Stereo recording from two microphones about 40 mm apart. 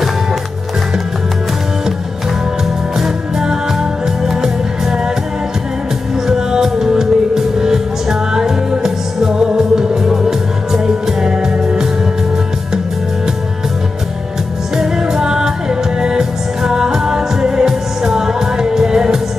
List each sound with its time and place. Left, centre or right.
3.0 s music: centre
6.2 s music: centre
14.8 s music: centre